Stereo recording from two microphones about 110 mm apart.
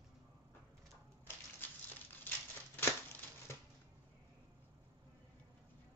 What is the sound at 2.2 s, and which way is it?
Tearing, 15° left (ahead or behind).